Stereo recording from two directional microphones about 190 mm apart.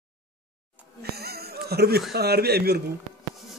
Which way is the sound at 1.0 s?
55° right (ahead or behind).